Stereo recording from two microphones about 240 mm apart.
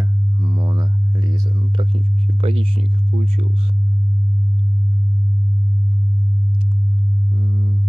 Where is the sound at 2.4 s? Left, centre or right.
Right.